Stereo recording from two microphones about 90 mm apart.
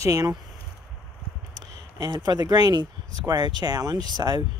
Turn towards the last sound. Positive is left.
turn(degrees=-50)  # may be behind; listen again after turning